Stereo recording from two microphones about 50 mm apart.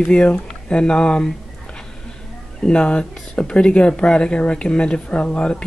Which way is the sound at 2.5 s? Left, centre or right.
Centre.